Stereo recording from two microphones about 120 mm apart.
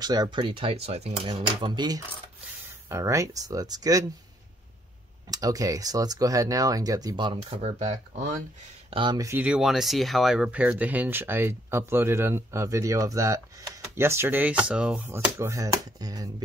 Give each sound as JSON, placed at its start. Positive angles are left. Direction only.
{"t": 0.0, "sound": "speech", "side_deg": -35}
{"t": 1.2, "sound": "speech", "side_deg": -40}
{"t": 2.9, "sound": "speech", "side_deg": -25}
{"t": 5.3, "sound": "speech", "side_deg": -30}
{"t": 7.6, "sound": "speech", "side_deg": -70}
{"t": 8.9, "sound": "speech", "side_deg": -40}
{"t": 9.4, "sound": "speech", "side_deg": -5}
{"t": 15.3, "sound": "speech", "side_deg": -25}